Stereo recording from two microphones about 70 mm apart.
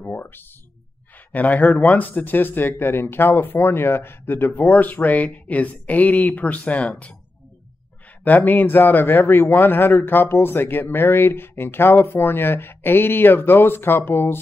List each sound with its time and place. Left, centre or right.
0.0 s speech: left
8.2 s speech: left